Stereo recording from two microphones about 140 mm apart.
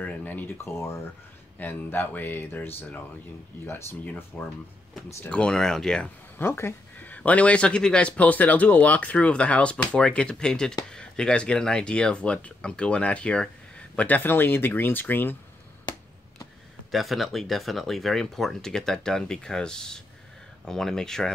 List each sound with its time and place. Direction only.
0.0 s speech: 10° left (ahead or behind)
6.3 s speech: 15° left (ahead or behind)
16.9 s speech: centre (ahead or behind)